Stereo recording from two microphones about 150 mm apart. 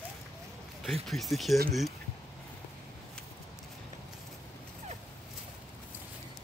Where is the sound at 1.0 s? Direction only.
Centre (ahead or behind).